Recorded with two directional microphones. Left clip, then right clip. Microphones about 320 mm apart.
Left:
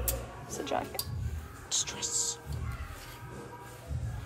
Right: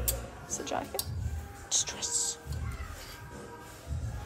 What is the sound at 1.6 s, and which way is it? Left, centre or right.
Speech, right.